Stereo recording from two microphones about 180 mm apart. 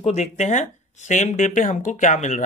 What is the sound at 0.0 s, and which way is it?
Speech, 35° left (ahead or behind).